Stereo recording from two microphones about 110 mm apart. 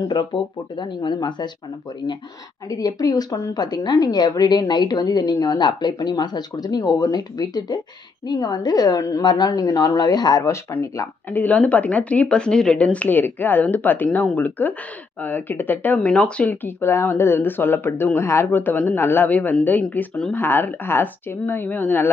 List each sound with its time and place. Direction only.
0.1 s speech: 45° left (ahead or behind)
2.0 s a woman's voice: 30° left (ahead or behind)
11.3 s speech: 15° left (ahead or behind)